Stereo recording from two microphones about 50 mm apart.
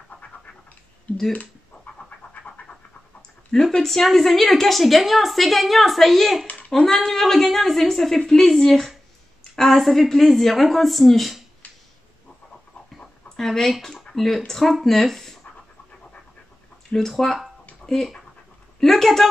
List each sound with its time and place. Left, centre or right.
2.0 s a sound: left
2.7 s dog: centre
3.7 s a woman's voice: centre
12.9 s a sound: centre
14.6 s a woman's voice: centre
16.9 s speech: left
17.9 s a woman's voice: centre